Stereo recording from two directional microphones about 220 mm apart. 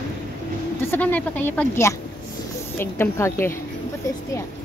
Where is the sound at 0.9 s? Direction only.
5° left (ahead or behind).